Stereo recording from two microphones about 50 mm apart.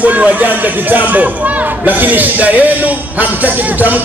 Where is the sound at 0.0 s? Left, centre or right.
Right.